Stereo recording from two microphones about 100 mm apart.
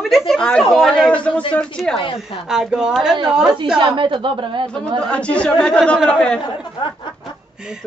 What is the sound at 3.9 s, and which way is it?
Speech, 55° right (ahead or behind).